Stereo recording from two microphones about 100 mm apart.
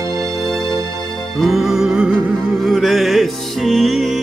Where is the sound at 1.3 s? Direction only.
Centre (ahead or behind).